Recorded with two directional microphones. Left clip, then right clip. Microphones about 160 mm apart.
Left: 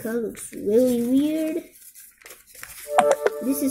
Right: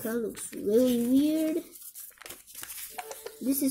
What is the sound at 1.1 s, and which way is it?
Child singing, 15° right (ahead or behind).